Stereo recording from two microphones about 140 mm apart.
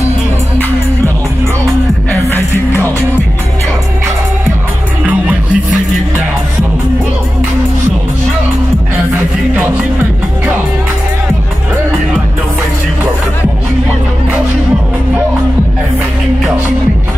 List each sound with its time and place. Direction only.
2.2 s music: 20° left (ahead or behind)
5.0 s music: 10° right (ahead or behind)